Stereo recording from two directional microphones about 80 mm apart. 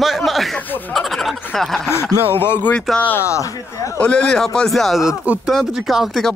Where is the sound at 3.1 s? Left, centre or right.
Left.